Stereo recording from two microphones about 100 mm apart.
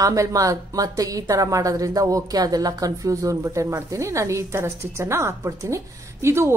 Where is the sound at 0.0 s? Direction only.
35° right (ahead or behind).